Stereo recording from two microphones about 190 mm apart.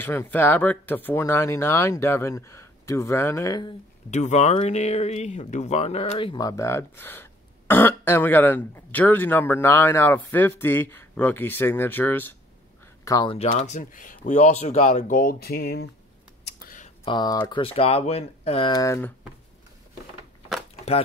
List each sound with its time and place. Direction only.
0.0 s speech: 10° left (ahead or behind)
4.1 s speech: 35° left (ahead or behind); by 12.4 s 10° left (ahead or behind)
13.0 s speech: 20° left (ahead or behind)
13.5 s speech: 40° left (ahead or behind); by 15.9 s 55° left (ahead or behind)
16.4 s a sound: 50° left (ahead or behind)
17.0 s speech: 25° left (ahead or behind)